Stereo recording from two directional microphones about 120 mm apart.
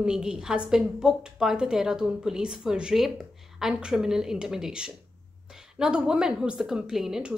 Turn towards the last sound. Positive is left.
turn(degrees=-5)  # may be behind; listen again after turning